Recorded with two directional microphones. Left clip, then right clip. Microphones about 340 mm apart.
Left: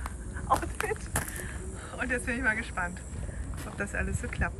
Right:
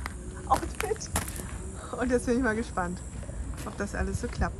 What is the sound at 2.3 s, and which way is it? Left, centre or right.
Speech, centre.